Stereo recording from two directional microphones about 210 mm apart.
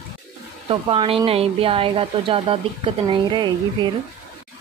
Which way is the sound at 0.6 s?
25° right (ahead or behind).